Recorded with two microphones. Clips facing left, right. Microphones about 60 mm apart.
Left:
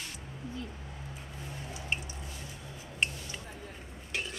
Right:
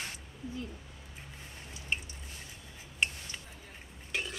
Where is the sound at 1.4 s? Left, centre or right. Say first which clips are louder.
Left 6 dB; left.